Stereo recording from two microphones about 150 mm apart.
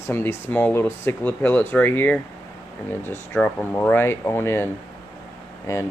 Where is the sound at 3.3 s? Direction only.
10° left (ahead or behind).